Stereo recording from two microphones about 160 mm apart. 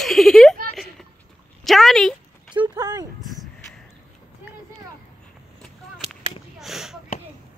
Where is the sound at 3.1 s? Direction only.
Centre (ahead or behind).